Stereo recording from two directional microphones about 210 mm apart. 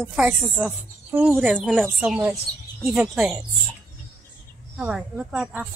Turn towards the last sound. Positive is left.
turn(degrees=-5)  # may be behind; listen again after turning